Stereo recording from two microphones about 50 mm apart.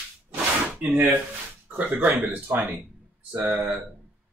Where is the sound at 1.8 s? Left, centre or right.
Right.